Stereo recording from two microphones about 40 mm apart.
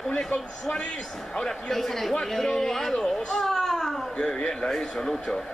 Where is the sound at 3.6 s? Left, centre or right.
Centre.